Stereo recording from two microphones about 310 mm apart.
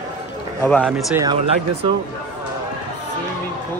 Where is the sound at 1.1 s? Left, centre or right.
Centre.